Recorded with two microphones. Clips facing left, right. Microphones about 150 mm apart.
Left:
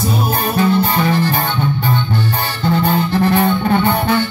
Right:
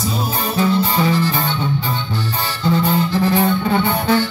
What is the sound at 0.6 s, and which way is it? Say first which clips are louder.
Music: left 1 dB; 55° left (ahead or behind).